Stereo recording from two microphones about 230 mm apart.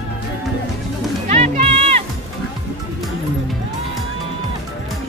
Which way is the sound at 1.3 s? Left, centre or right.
Right.